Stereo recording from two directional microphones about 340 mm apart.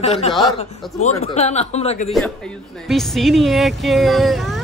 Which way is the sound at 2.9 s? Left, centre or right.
Centre.